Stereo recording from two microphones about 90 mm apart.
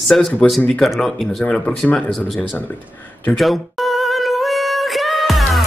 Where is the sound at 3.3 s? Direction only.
Centre (ahead or behind).